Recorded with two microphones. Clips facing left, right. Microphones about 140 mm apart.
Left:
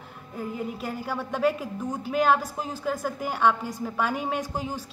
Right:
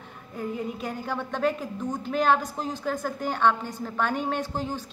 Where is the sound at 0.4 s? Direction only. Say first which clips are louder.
Right 1 dB; 5° left (ahead or behind).